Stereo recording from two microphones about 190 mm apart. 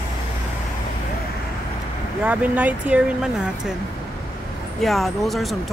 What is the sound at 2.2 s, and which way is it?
Speech, 10° right (ahead or behind).